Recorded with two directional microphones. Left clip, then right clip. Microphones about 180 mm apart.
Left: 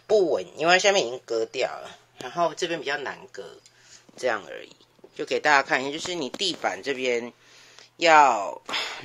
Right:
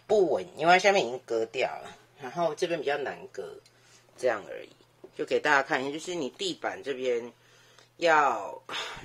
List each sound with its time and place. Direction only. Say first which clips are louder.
0.0 s speech: left 3 dB; centre (ahead or behind); by 8.9 s 15° left (ahead or behind)